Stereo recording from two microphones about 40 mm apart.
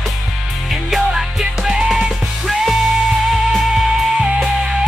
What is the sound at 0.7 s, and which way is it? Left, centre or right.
Music, centre.